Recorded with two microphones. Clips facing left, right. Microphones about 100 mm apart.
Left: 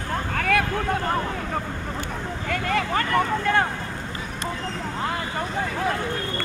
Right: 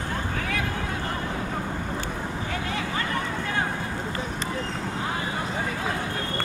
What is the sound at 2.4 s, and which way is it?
Vehicle, 60° left (ahead or behind).